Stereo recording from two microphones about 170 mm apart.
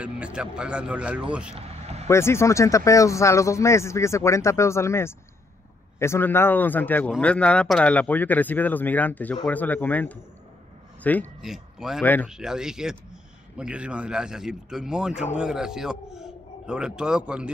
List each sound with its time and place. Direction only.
0.0 s speech: 5° right (ahead or behind)
1.5 s vehicle: 35° right (ahead or behind)
2.0 s speech: 15° left (ahead or behind)
11.4 s speech: centre (ahead or behind)
12.0 s speech: 10° left (ahead or behind)
12.3 s a man's voice: 5° right (ahead or behind)